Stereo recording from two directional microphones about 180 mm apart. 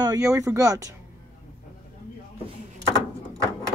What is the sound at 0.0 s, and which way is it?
Speech, 20° right (ahead or behind).